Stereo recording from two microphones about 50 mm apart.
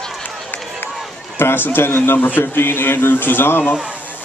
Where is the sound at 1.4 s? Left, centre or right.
Left.